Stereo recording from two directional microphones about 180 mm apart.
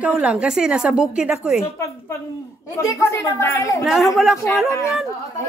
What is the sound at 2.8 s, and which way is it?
Speech, 15° left (ahead or behind).